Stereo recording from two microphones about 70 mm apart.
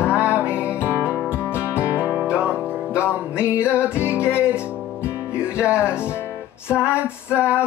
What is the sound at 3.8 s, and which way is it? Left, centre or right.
Music, left.